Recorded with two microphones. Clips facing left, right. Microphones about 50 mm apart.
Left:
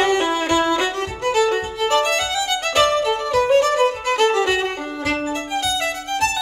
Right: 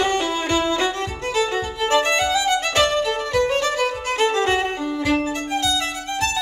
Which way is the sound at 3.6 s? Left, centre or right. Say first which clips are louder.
Left 4 dB; left.